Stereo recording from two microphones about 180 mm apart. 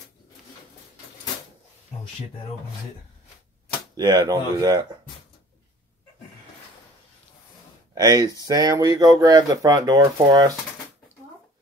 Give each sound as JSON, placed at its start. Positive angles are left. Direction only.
{"t": 3.9, "sound": "speech", "side_deg": -20}
{"t": 7.9, "sound": "speech", "side_deg": -20}